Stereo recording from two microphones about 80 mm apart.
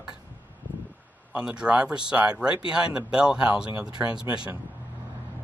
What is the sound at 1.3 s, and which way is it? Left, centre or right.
Speech, centre.